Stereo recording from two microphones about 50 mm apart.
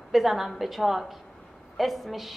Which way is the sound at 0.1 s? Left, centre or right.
Centre.